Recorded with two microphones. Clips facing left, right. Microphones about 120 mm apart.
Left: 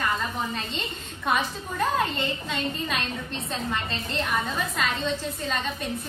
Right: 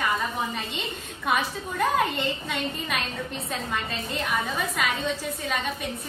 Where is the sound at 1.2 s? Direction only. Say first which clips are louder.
Even; 5° right (ahead or behind).